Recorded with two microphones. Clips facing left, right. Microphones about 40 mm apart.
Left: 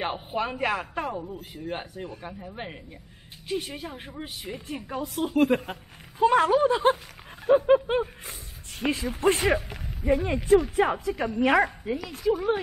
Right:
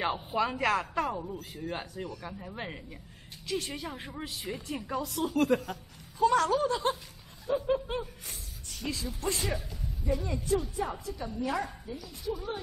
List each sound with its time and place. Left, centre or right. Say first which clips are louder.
0.0 s speech: left 1 dB; left
1.4 s speech: left 3 dB; left
2.5 s speech: even; centre
3.4 s speech: left 3 dB; left
7.4 s a sound: left 10 dB; left
7.8 s speech: left 9 dB; left